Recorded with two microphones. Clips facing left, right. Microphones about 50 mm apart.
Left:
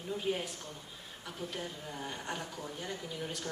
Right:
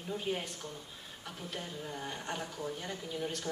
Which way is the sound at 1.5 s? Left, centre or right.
Centre.